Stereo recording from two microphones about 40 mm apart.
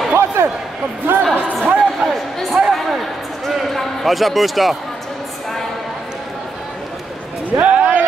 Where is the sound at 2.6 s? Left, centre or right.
Right.